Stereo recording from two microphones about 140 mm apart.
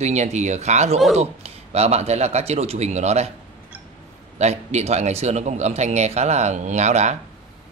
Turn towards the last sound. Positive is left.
turn(degrees=-55)  # may be behind; listen again after turning